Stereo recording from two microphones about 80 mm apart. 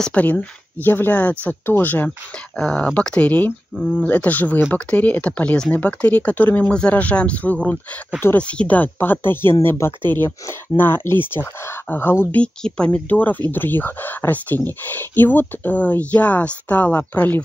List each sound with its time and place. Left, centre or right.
0.0 s speech: centre
2.0 s speech: centre; by 12.4 s left
12.4 s speech: centre